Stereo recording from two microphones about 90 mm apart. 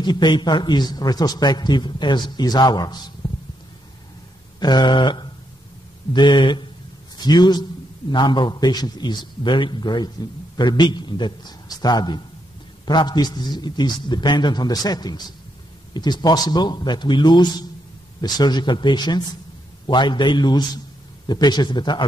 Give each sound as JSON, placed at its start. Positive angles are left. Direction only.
{"t": 0.0, "sound": "a man's voice", "side_deg": 55}
{"t": 4.6, "sound": "a sound", "side_deg": 50}
{"t": 6.1, "sound": "a man's voice", "side_deg": 60}
{"t": 8.1, "sound": "a man's voice", "side_deg": 60}